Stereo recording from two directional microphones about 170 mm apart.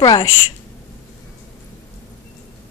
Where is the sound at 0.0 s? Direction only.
20° left (ahead or behind).